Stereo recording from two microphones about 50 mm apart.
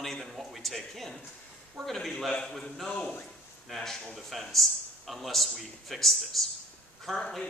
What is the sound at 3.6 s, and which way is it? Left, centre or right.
Speech, centre.